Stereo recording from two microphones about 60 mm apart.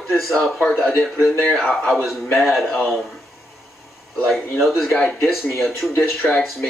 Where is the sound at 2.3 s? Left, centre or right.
Centre.